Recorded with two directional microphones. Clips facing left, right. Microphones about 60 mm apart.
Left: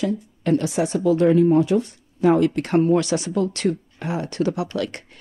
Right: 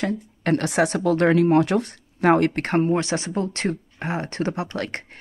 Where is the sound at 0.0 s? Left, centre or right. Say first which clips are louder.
Left 1 dB; right.